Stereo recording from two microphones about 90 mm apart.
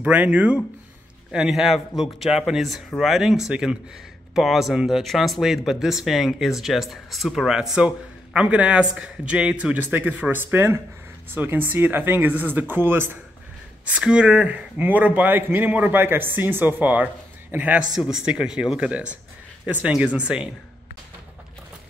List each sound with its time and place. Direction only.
0.0 s speech: 15° right (ahead or behind)
13.8 s speech: 10° right (ahead or behind)
17.9 s speech: 5° right (ahead or behind)